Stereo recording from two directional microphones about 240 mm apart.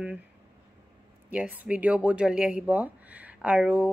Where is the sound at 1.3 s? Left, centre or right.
Centre.